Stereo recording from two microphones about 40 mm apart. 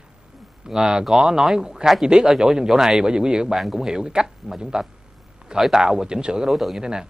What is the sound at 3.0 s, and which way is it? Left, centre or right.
Speech, centre.